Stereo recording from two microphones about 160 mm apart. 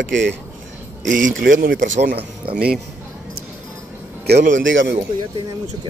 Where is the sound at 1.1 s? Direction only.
60° right (ahead or behind).